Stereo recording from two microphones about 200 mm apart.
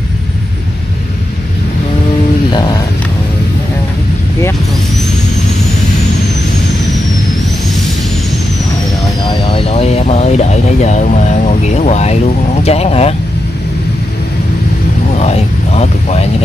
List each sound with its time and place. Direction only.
9.2 s vehicle: 30° left (ahead or behind)
12.6 s speech: 30° left (ahead or behind)
15.1 s vehicle: 30° left (ahead or behind)